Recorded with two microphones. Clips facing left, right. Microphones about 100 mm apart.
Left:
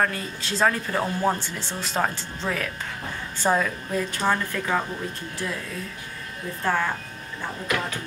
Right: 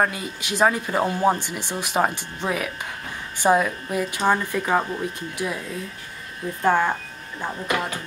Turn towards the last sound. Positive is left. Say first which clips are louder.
# right 2 dB
turn(degrees=-15)  # may be behind; listen again after turning